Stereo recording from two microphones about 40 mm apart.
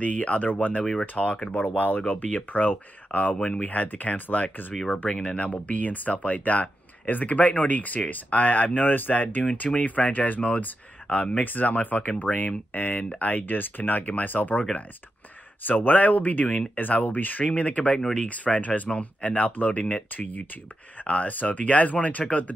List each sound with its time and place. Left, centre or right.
0.0 s speech: left
5.1 s speech: left
11.4 s speech: left